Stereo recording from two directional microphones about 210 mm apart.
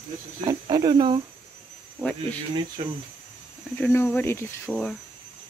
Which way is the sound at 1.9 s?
5° left (ahead or behind).